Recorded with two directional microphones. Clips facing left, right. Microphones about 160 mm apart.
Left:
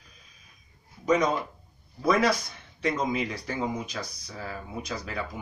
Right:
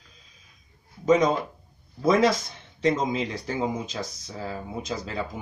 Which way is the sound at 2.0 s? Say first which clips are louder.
Right 3 dB; 25° right (ahead or behind).